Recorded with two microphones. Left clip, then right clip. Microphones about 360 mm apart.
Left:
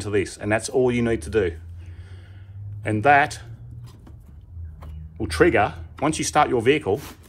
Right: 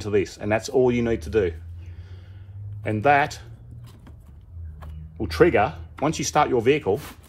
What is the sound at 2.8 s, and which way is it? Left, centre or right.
Speech, left.